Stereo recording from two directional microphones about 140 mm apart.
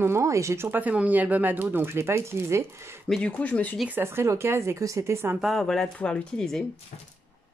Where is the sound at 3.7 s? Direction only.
10° right (ahead or behind).